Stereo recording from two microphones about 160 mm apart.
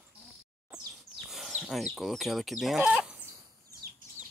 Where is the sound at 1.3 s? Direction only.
Centre (ahead or behind).